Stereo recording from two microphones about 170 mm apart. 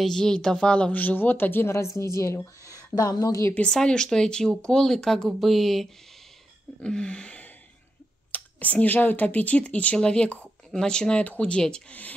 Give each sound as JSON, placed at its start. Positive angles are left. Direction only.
{"t": 0.0, "sound": "a woman's voice", "side_deg": 5}
{"t": 3.5, "sound": "speech", "side_deg": 5}